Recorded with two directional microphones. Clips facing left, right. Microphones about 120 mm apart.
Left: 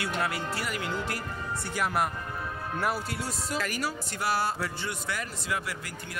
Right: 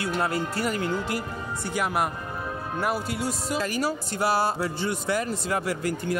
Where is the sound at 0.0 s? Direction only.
30° right (ahead or behind).